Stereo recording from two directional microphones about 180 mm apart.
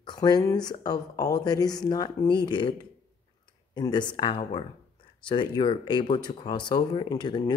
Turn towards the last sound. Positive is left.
turn(degrees=25)  # may be behind; listen again after turning